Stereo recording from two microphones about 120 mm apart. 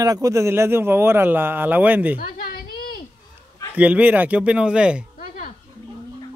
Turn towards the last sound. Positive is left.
turn(degrees=-10)  # may be behind; listen again after turning